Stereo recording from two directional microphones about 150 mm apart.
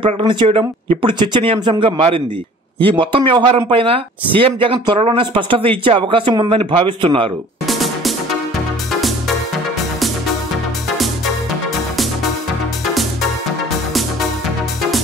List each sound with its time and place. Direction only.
0.0 s speech: 30° right (ahead or behind)
7.6 s music: centre (ahead or behind)